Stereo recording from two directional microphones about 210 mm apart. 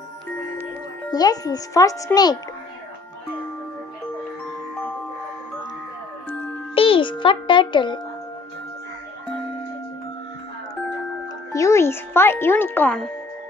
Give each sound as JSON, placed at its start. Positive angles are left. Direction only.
{"t": 1.1, "sound": "speech", "side_deg": 20}
{"t": 6.7, "sound": "a child's voice", "side_deg": 25}
{"t": 11.5, "sound": "speech", "side_deg": 15}